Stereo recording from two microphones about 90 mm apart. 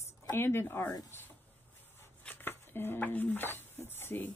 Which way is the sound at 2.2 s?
20° left (ahead or behind).